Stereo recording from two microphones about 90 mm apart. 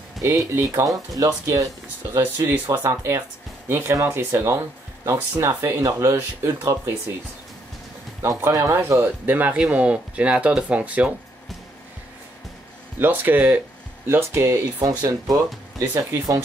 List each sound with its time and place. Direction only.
0.2 s speech: 30° right (ahead or behind)
2.1 s speech: 25° right (ahead or behind)
8.2 s speech: 35° right (ahead or behind); by 11.1 s 15° right (ahead or behind)
13.0 s speech: 20° right (ahead or behind); by 15.3 s 40° right (ahead or behind)